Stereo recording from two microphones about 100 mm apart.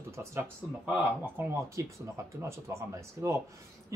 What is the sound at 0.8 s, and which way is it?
Speech, 15° right (ahead or behind).